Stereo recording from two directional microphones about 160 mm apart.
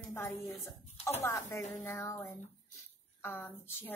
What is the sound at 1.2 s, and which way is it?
A woman's voice, 20° left (ahead or behind).